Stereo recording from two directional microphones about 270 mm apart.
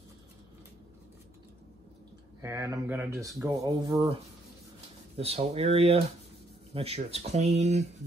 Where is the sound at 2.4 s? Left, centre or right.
Centre.